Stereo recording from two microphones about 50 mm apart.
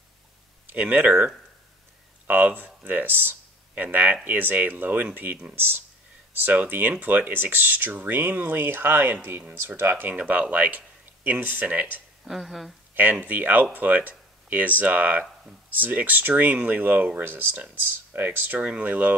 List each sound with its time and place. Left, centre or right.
0.7 s speech: right
2.2 s speech: right
6.4 s speech: right
10.1 s speech: right
12.3 s speech: centre
12.9 s speech: right
18.6 s speech: right